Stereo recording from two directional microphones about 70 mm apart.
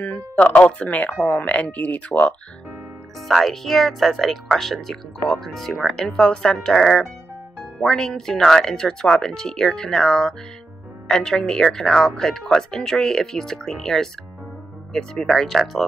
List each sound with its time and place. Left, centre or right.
0.4 s speech: centre
3.2 s speech: centre